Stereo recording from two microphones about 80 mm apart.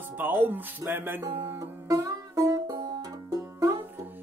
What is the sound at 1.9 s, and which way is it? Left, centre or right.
Music, right.